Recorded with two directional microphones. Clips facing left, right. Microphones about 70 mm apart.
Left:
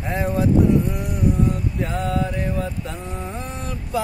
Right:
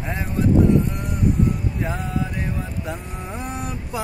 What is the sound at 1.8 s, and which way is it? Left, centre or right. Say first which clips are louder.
Mantra: left 4 dB; centre.